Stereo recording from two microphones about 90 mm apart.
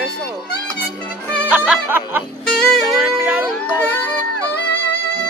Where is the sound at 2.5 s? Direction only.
5° left (ahead or behind).